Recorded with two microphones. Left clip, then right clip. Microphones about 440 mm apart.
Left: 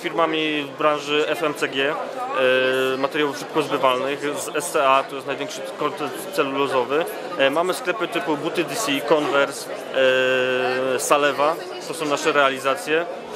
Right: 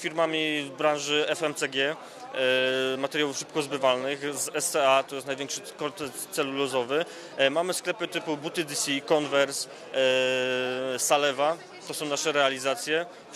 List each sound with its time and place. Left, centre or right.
0.0 s speech: right